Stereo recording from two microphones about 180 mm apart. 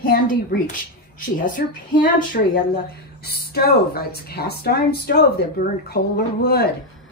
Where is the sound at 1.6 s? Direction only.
50° left (ahead or behind).